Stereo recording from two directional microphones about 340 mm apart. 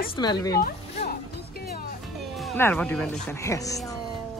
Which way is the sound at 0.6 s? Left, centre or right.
Left.